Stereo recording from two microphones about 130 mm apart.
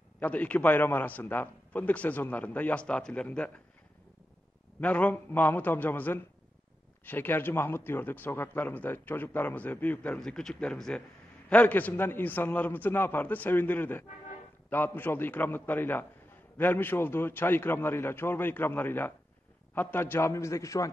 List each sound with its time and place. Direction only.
0.2 s a man's voice: 10° left (ahead or behind)
4.7 s a man's voice: 10° left (ahead or behind)